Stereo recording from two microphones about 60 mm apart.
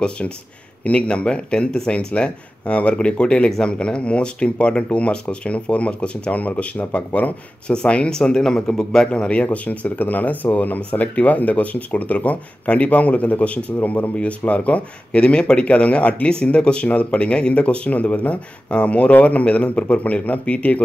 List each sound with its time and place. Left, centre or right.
0.8 s speech: centre